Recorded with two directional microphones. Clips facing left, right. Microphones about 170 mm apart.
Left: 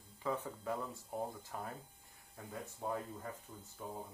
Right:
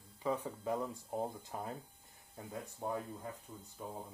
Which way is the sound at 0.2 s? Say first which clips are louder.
Right 2 dB; 15° right (ahead or behind).